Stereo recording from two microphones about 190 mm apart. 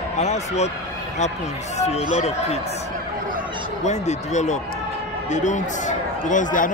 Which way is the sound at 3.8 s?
35° left (ahead or behind).